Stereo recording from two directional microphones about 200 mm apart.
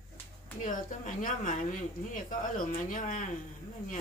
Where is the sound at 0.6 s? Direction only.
40° left (ahead or behind).